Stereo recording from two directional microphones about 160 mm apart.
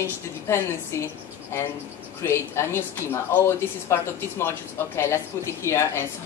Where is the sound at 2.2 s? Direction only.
15° left (ahead or behind).